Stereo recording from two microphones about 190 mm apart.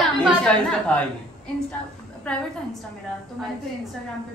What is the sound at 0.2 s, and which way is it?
Speech, 5° left (ahead or behind).